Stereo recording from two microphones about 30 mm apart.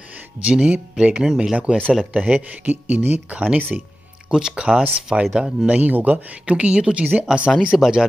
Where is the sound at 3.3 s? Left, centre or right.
Right.